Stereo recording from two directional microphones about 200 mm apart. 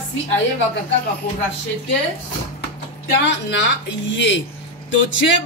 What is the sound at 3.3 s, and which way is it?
Speech, 60° left (ahead or behind).